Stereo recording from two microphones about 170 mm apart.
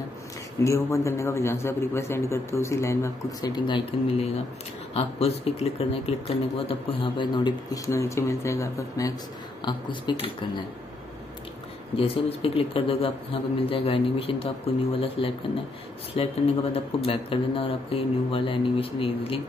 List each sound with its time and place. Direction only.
0.7 s a man's voice: 15° left (ahead or behind)
12.0 s speech: 35° left (ahead or behind)